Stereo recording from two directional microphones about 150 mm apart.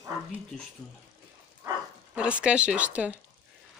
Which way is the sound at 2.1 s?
5° right (ahead or behind).